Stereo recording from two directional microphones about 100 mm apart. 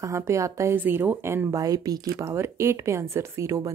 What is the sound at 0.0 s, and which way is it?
Speech, 30° right (ahead or behind).